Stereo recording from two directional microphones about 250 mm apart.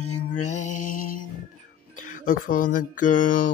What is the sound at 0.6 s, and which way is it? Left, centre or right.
Mantra, left.